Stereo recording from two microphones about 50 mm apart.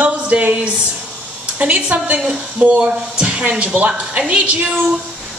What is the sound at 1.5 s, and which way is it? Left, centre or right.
A woman's voice, right.